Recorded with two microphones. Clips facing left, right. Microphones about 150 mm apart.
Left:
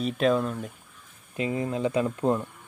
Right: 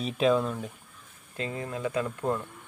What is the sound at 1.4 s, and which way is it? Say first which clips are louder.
Speech: left 5 dB; 20° left (ahead or behind).